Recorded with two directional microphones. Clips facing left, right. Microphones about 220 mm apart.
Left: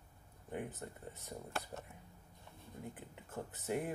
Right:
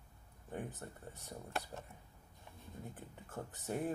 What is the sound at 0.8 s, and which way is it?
Speech, 15° left (ahead or behind).